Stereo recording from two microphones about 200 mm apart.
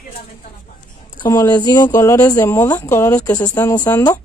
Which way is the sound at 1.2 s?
15° left (ahead or behind).